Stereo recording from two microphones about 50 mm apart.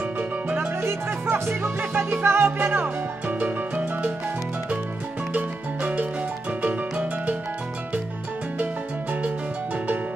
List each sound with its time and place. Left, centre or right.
1.8 s music: right
5.3 s music: right